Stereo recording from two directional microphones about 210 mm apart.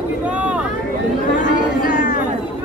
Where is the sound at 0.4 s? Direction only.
5° right (ahead or behind).